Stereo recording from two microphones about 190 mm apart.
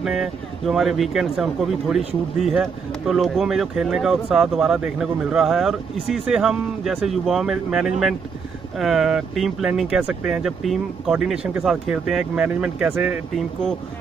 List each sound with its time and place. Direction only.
0.0 s speech: centre (ahead or behind)